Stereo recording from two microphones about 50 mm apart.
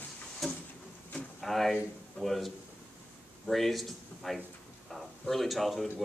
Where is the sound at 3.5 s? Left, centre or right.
Centre.